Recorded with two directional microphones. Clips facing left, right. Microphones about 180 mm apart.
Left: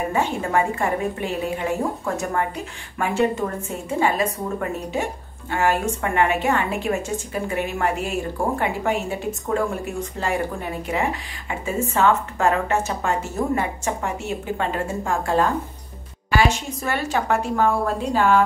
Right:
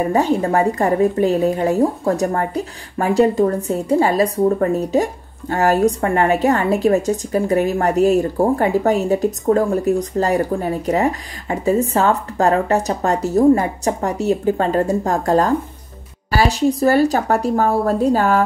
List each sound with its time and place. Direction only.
0.1 s a woman's voice: 40° right (ahead or behind)